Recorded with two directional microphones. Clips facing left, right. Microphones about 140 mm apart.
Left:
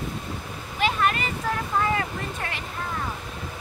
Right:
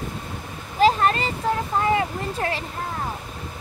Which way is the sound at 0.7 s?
35° right (ahead or behind).